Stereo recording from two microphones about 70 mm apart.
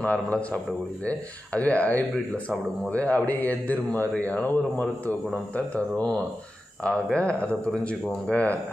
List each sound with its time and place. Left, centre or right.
0.0 s speech: centre